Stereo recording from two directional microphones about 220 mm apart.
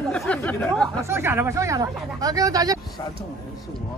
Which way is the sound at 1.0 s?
10° right (ahead or behind).